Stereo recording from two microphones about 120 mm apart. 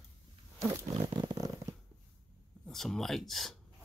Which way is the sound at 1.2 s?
30° right (ahead or behind).